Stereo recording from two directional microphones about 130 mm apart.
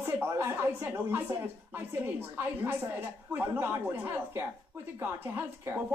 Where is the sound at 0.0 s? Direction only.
20° right (ahead or behind).